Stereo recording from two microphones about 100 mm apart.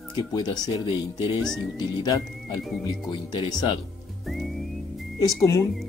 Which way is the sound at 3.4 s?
50° left (ahead or behind).